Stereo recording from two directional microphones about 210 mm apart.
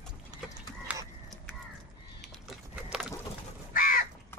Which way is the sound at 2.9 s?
5° right (ahead or behind).